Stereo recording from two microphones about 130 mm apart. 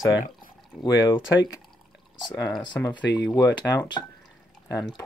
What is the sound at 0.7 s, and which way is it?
Speech, 35° left (ahead or behind).